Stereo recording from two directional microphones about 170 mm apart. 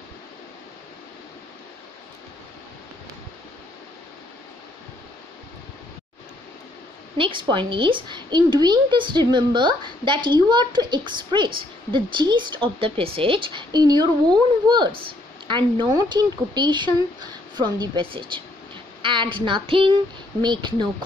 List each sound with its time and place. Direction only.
7.2 s a woman's voice: 30° right (ahead or behind)